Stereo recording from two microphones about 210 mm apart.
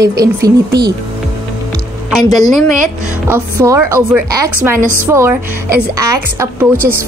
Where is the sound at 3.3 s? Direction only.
10° right (ahead or behind).